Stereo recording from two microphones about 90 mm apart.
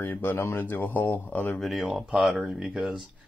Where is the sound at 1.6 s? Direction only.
5° right (ahead or behind).